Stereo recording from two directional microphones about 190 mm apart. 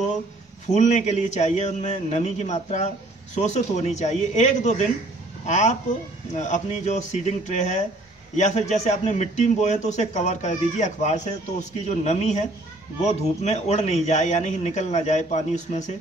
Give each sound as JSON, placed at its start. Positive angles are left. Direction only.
{"t": 0.7, "sound": "speech", "side_deg": 40}